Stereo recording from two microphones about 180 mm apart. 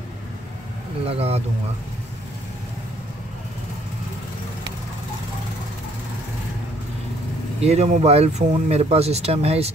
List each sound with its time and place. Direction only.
1.0 s speech: 35° right (ahead or behind)
7.6 s speech: 35° right (ahead or behind)